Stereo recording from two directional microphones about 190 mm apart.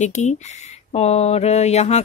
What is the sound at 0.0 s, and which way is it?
Speech, 40° left (ahead or behind).